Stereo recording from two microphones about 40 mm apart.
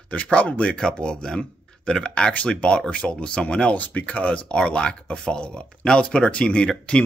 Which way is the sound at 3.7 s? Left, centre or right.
Left.